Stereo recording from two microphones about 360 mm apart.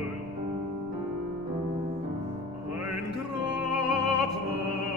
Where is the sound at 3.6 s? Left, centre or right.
Left.